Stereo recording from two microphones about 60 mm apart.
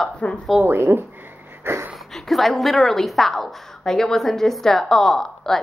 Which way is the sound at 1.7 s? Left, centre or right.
Right.